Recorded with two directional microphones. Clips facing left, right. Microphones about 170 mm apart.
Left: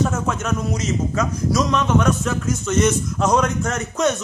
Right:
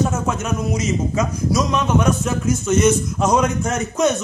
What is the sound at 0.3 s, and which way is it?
A man's voice, 5° right (ahead or behind).